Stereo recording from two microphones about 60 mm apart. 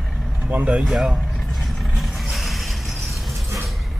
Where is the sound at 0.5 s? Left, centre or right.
Right.